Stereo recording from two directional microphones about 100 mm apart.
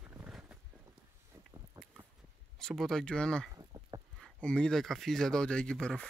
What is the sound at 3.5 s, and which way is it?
Livestock, 35° right (ahead or behind).